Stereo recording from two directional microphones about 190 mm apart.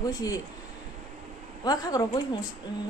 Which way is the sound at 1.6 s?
20° left (ahead or behind).